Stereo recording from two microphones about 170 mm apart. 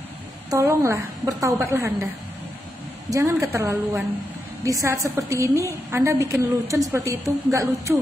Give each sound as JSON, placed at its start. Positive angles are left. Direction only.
{"t": 0.5, "sound": "a woman's voice", "side_deg": -15}
{"t": 3.1, "sound": "a woman's voice", "side_deg": -20}